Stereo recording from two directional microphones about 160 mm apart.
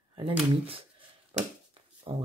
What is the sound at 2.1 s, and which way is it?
Speech, 40° right (ahead or behind).